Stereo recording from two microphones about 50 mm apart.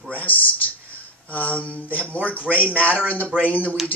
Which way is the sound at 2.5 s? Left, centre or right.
Right.